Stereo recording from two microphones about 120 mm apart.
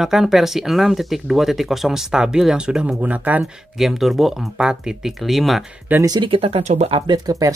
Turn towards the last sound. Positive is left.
turn(degrees=-30)  # may be behind; listen again after turning